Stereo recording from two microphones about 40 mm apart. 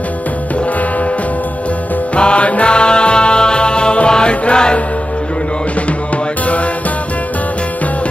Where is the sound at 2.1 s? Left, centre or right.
Left.